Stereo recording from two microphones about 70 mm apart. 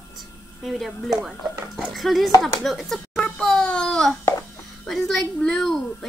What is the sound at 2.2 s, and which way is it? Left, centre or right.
Speech, left.